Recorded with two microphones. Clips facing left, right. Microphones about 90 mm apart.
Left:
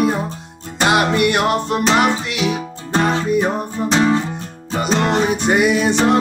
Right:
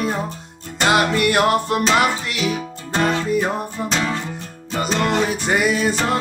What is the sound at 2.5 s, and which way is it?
Music, 30° left (ahead or behind).